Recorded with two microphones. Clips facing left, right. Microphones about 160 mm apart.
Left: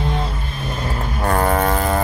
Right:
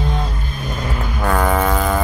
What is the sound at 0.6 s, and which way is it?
Vehicle, 30° left (ahead or behind).